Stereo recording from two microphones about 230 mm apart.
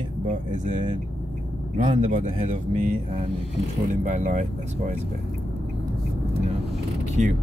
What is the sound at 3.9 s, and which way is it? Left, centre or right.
Speech, right.